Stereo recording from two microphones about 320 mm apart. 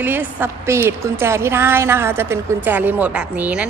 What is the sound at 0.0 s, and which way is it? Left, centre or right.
A woman's voice, centre.